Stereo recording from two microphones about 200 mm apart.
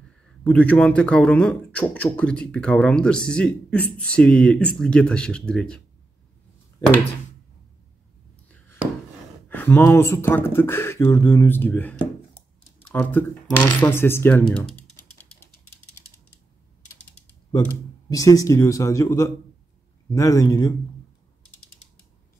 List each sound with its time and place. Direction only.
0.4 s speech: 5° left (ahead or behind)
9.5 s speech: 10° left (ahead or behind)
18.1 s speech: 15° left (ahead or behind)